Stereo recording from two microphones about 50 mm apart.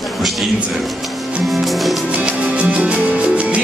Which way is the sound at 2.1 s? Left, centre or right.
Right.